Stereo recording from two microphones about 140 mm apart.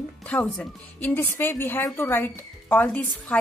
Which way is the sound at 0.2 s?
10° left (ahead or behind).